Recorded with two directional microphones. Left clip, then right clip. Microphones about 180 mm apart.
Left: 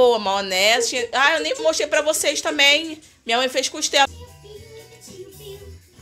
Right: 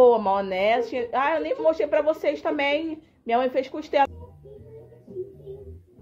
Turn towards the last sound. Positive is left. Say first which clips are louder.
# left 4 dB
turn(degrees=0)  # may be behind; listen again after turning